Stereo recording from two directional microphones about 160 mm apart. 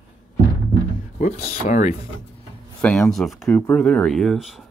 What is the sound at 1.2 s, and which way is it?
Speech, 50° left (ahead or behind).